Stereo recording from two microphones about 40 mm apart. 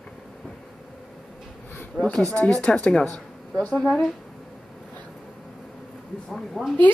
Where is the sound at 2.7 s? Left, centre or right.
Left.